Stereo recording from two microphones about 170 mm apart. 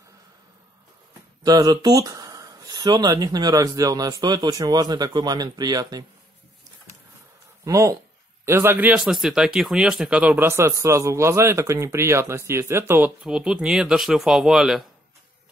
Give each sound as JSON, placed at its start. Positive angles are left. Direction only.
{"t": 1.4, "sound": "speech", "side_deg": -20}
{"t": 7.6, "sound": "speech", "side_deg": -20}